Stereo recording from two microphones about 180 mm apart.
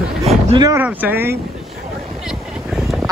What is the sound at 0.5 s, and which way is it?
Speech, 20° right (ahead or behind).